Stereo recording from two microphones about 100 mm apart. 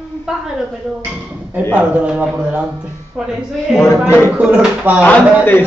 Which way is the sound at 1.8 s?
15° right (ahead or behind).